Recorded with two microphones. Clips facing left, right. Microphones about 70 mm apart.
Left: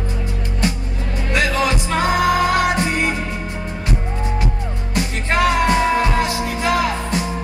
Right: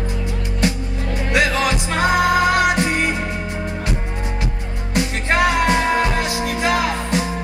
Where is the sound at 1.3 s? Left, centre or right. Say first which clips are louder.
Even; right.